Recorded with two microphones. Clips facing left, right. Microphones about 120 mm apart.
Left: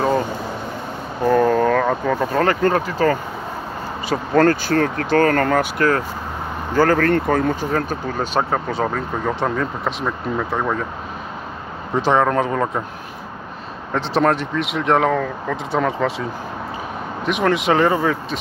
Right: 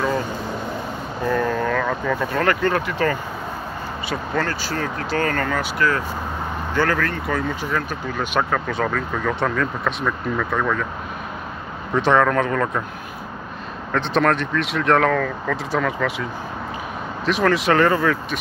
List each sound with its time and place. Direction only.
1.2 s speech: 40° left (ahead or behind)
4.1 s speech: 45° left (ahead or behind)
7.1 s speech: 55° left (ahead or behind)
8.4 s speech: 30° left (ahead or behind)
11.9 s speech: 25° left (ahead or behind)
14.1 s speech: 25° left (ahead or behind)
17.2 s speech: 20° left (ahead or behind)